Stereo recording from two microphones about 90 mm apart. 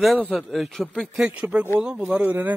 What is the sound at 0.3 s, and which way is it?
Speech, centre (ahead or behind).